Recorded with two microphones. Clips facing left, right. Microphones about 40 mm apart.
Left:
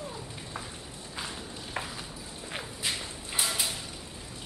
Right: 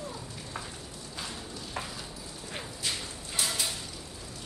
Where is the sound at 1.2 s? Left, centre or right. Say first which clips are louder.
Left 1 dB; centre.